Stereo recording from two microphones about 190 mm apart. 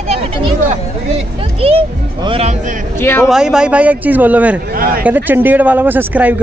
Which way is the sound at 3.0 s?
10° left (ahead or behind).